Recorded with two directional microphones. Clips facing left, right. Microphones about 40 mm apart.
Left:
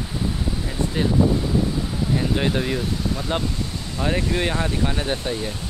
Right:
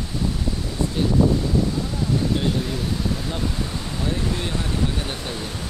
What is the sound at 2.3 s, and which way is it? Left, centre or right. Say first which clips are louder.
Speech: left 2 dB; left.